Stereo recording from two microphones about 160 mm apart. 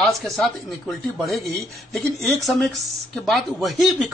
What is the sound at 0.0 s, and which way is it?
Speech, centre (ahead or behind).